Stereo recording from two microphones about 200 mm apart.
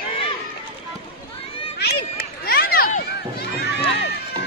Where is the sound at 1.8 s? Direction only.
55° left (ahead or behind).